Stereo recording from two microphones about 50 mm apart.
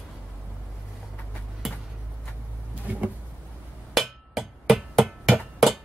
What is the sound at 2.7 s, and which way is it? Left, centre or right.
Power windows, right.